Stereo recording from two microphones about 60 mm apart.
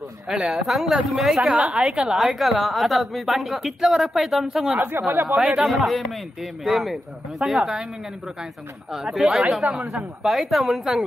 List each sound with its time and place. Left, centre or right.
0.3 s a woman's voice: centre
1.6 s a woman's voice: centre
4.7 s speech: right
5.2 s a woman's voice: centre
9.1 s a woman's voice: centre